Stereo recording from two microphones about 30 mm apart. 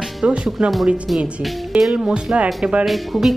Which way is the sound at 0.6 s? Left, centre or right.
Centre.